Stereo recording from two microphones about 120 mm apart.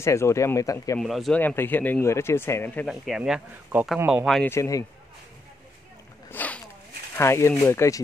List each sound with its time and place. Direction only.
0.0 s speech: 25° left (ahead or behind)
0.9 s speech: centre (ahead or behind)
1.4 s speech: 15° left (ahead or behind)
2.9 s speech: 5° right (ahead or behind)
4.5 s speech: 25° left (ahead or behind)
6.3 s zipper: 15° left (ahead or behind)
7.2 s speech: 20° left (ahead or behind)